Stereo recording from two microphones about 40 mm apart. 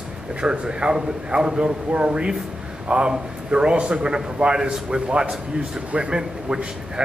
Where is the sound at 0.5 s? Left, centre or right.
Right.